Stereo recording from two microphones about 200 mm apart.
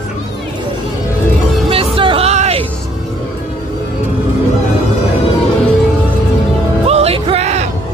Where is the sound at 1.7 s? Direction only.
25° right (ahead or behind).